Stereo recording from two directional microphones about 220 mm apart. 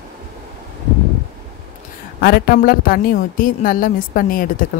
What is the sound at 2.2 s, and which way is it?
A woman's voice, 45° left (ahead or behind).